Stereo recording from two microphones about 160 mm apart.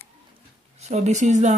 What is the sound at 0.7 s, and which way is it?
Speech, 45° right (ahead or behind).